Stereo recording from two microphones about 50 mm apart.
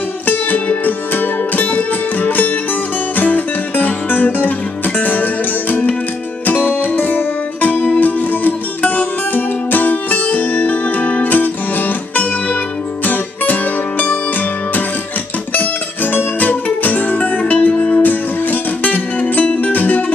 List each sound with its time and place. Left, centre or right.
0.3 s music: left
15.5 s music: left